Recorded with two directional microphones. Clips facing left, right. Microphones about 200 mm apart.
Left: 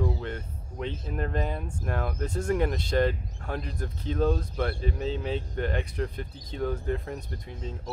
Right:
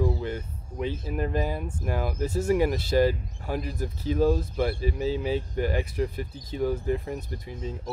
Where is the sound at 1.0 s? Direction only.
5° right (ahead or behind).